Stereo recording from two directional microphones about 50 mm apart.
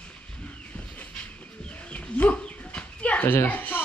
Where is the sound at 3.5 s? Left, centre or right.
Left.